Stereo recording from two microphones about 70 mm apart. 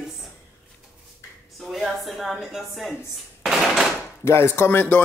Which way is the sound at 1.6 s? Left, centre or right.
Centre.